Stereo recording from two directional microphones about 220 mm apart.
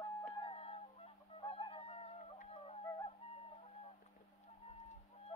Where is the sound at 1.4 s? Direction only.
25° left (ahead or behind).